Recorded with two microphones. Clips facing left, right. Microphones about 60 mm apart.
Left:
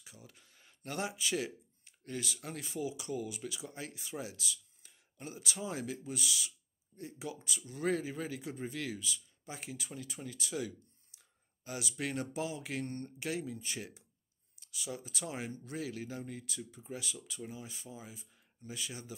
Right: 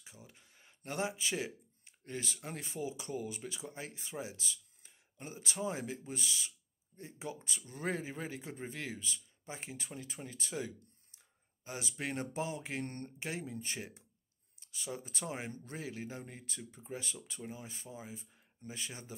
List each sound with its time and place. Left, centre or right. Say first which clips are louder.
0.0 s speech: even; right
12.8 s speech: left 2 dB; right
14.5 s a sound: left 2 dB; right
14.9 s speech: even; right